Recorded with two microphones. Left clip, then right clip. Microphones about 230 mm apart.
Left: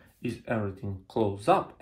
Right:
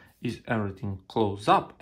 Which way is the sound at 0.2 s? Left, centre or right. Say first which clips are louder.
Right 1 dB; right.